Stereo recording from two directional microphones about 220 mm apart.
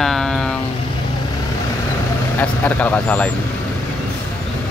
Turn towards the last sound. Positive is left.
turn(degrees=5)  # may be behind; listen again after turning